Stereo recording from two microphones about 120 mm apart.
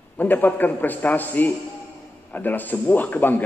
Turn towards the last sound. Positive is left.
turn(degrees=15)  # may be behind; listen again after turning